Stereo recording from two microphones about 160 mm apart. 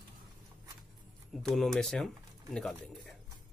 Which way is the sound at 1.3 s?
Centre (ahead or behind).